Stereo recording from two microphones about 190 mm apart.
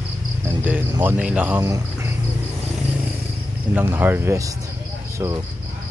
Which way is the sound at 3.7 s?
10° right (ahead or behind).